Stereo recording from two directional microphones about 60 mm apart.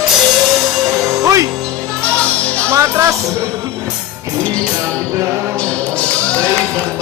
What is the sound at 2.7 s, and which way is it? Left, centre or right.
Speech, right.